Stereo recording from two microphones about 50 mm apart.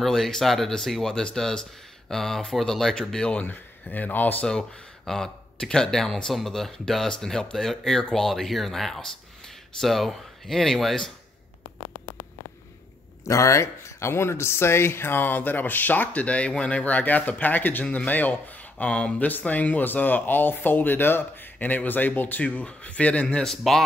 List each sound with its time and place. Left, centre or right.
0.0 s speech: centre
3.4 s speech: left
4.5 s speech: centre
13.3 s speech: left
19.2 s speech: left
22.4 s speech: left
23.2 s speech: centre